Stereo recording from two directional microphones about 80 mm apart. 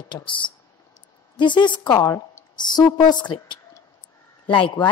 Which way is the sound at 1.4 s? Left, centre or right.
Left.